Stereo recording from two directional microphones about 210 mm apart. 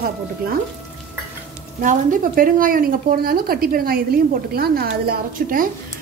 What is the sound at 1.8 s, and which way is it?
A woman's voice, 40° right (ahead or behind).